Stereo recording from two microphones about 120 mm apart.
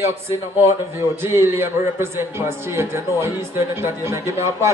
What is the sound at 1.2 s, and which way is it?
Music, 20° right (ahead or behind).